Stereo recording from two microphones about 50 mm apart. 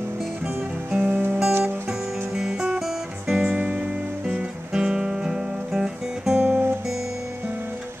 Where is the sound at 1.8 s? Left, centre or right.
Centre.